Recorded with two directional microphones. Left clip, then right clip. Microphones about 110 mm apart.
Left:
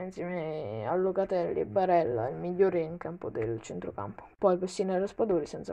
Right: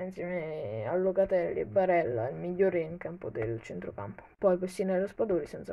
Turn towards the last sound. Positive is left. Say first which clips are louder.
# left 2 dB
turn(degrees=30)  # may be behind; listen again after turning